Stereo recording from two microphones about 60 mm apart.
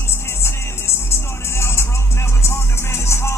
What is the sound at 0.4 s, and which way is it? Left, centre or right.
Music, left.